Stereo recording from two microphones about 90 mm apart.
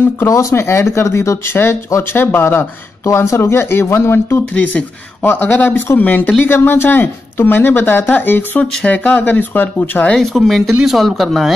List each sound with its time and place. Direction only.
0.0 s speech: 30° left (ahead or behind)
10.1 s speech: 5° left (ahead or behind)